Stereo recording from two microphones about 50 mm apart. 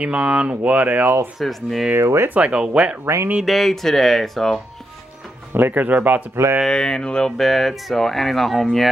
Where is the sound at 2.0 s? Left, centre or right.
Right.